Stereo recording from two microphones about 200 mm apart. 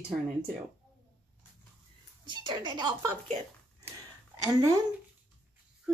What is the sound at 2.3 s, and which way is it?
Speech, 20° right (ahead or behind).